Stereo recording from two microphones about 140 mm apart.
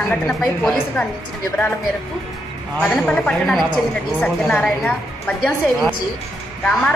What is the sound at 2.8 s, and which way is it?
A woman's voice, 10° left (ahead or behind).